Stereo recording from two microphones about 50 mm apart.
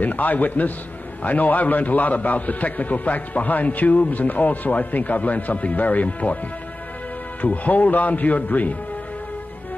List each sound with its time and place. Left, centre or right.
0.0 s a man's voice: left
7.4 s a man's voice: left